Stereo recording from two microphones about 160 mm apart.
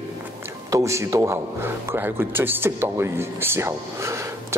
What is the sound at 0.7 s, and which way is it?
A man's voice, 20° right (ahead or behind).